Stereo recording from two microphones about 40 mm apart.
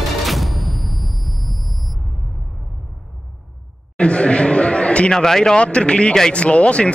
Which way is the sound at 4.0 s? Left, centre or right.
Left.